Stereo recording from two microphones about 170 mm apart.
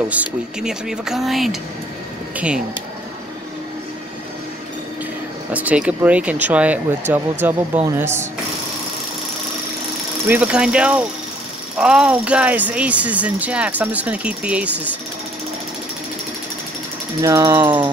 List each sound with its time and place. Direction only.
0.1 s speech: 5° right (ahead or behind)
5.5 s speech: 10° right (ahead or behind)
10.2 s speech: 10° right (ahead or behind)
17.2 s speech: 15° right (ahead or behind)